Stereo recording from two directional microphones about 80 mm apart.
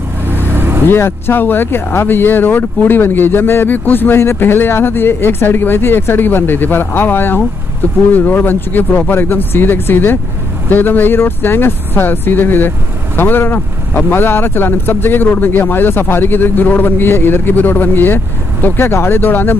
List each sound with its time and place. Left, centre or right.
0.5 s vehicle: right
0.8 s speech: left